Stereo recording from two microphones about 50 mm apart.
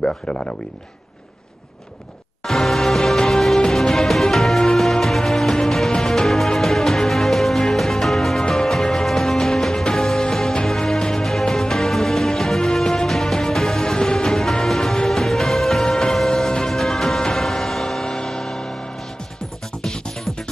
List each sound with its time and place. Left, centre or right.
0.0 s speech: centre
2.4 s music: centre